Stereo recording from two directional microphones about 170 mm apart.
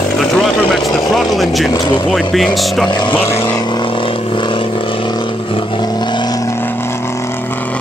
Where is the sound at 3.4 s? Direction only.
25° left (ahead or behind).